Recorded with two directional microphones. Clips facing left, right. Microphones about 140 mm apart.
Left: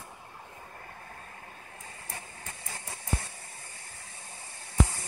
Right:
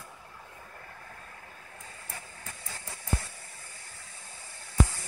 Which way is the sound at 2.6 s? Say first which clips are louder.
Right 1 dB; 20° left (ahead or behind).